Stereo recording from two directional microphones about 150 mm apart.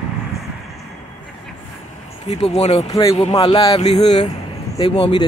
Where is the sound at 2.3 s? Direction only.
45° left (ahead or behind).